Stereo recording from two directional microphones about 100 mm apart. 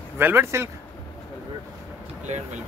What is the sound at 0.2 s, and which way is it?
Speech, 25° right (ahead or behind).